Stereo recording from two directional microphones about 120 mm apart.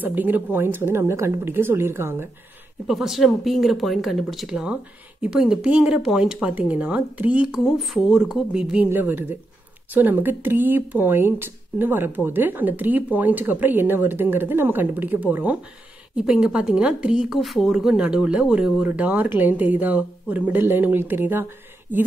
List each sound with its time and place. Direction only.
0.0 s speech: 15° right (ahead or behind)
2.9 s speech: centre (ahead or behind)